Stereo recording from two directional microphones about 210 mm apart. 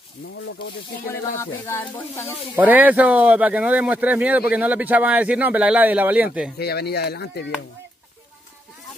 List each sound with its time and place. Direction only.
1.0 s speech: 10° left (ahead or behind)
2.5 s speech: 10° right (ahead or behind)
6.6 s speech: 50° left (ahead or behind)